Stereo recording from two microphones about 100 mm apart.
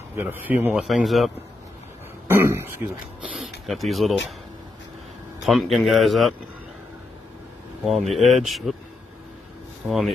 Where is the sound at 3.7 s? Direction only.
Centre (ahead or behind).